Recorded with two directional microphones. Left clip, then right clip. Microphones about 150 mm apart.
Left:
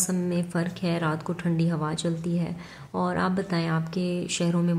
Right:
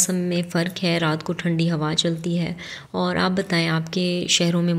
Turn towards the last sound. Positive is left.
turn(degrees=-20)  # may be behind; listen again after turning